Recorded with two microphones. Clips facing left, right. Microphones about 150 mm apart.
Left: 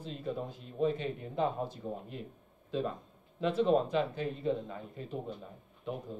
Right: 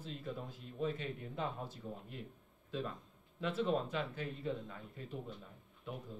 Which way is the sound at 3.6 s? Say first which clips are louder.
Left 8 dB; 25° left (ahead or behind).